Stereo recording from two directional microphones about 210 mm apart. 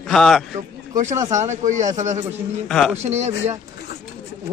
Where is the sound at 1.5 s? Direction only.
35° right (ahead or behind).